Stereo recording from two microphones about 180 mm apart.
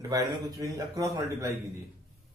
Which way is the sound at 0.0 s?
20° right (ahead or behind).